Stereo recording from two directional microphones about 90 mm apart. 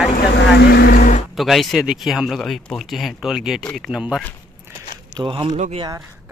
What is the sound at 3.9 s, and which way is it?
Speech, 10° right (ahead or behind).